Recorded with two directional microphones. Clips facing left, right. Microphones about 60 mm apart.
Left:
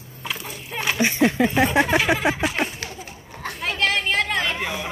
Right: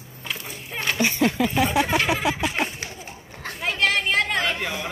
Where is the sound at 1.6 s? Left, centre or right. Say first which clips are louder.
Left 2 dB; left.